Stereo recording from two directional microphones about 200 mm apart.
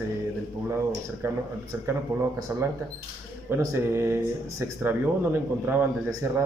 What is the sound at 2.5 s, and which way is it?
Speech, 10° right (ahead or behind).